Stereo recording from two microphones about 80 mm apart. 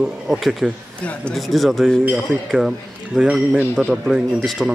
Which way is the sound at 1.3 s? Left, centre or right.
Centre.